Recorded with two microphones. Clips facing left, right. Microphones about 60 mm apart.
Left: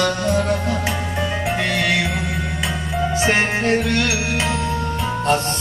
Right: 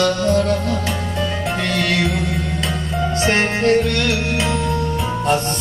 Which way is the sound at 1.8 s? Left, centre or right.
Centre.